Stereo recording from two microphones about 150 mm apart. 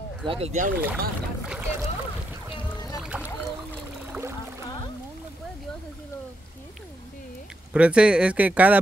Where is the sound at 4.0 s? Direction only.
15° right (ahead or behind).